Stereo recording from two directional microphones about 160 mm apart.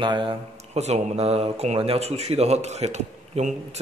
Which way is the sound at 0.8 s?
45° right (ahead or behind).